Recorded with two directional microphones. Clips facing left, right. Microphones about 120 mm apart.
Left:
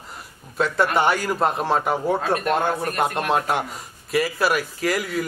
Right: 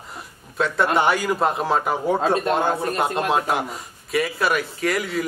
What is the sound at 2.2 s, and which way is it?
Speech, 30° right (ahead or behind).